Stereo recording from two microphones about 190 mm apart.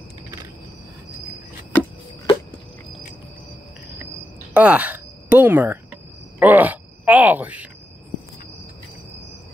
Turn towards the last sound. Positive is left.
turn(degrees=-10)  # may be behind; listen again after turning